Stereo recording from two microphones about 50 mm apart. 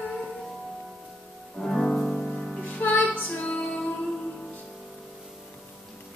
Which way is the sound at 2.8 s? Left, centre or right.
Left.